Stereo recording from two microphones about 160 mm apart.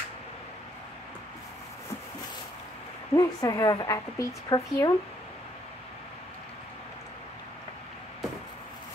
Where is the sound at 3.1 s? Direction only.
20° left (ahead or behind).